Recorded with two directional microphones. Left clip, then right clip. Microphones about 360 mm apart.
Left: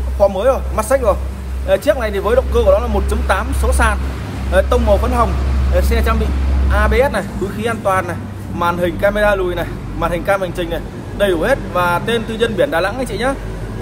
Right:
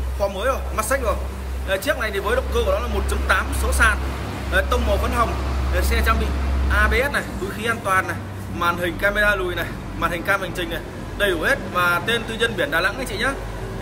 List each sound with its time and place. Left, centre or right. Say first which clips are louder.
0.2 s a man's voice: left 9 dB; centre